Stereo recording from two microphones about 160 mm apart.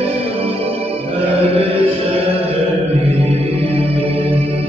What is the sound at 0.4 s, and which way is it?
Music, 35° right (ahead or behind).